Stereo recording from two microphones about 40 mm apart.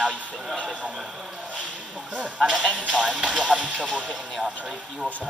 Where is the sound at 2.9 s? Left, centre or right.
Right.